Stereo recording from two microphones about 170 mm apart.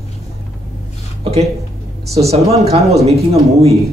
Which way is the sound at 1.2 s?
35° right (ahead or behind).